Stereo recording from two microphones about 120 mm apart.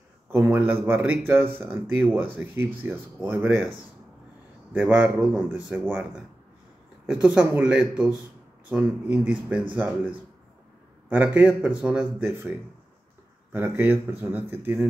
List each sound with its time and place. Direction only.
0.3 s a man's voice: 20° right (ahead or behind)
4.7 s speech: 15° right (ahead or behind)
11.1 s speech: 15° right (ahead or behind)
13.5 s speech: 15° right (ahead or behind)